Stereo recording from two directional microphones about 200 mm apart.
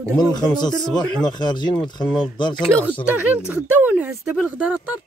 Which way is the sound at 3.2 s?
10° right (ahead or behind).